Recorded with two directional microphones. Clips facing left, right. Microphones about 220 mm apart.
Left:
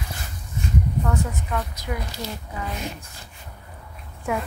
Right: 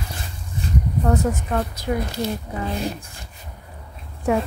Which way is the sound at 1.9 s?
35° right (ahead or behind).